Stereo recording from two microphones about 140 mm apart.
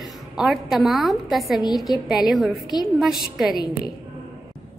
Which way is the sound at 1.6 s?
30° left (ahead or behind).